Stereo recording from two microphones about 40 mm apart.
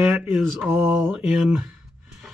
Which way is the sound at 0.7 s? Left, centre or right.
Right.